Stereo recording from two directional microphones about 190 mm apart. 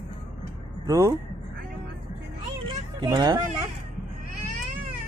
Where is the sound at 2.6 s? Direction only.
25° right (ahead or behind).